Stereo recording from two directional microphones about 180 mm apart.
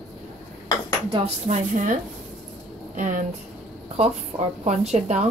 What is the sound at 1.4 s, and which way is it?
Speech, 40° right (ahead or behind).